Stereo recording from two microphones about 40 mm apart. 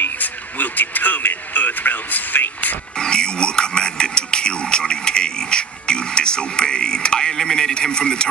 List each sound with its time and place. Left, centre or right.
0.2 s a sound: left
1.5 s speech: left
3.0 s speech: left